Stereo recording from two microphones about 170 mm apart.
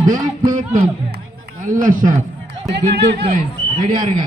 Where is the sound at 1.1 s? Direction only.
50° right (ahead or behind).